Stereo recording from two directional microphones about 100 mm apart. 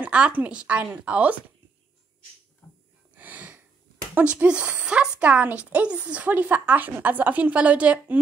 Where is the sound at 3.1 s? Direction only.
15° right (ahead or behind).